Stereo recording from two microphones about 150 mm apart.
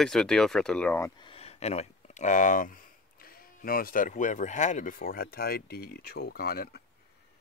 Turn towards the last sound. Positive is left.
turn(degrees=90)